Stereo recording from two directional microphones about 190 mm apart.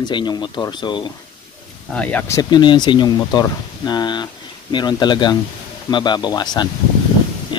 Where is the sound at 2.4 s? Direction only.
25° left (ahead or behind).